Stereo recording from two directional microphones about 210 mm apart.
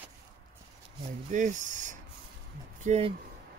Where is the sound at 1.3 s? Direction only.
35° right (ahead or behind).